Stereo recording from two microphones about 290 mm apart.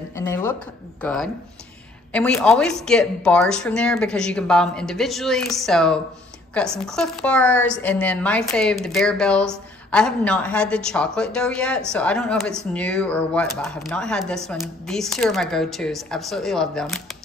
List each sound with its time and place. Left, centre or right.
0.1 s a woman's voice: centre